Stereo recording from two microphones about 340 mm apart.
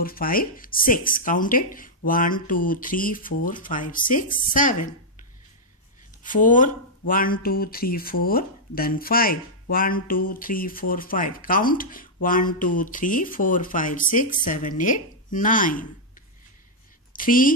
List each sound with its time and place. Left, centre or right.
0.0 s speech: left
6.2 s speech: left
17.1 s a woman's voice: left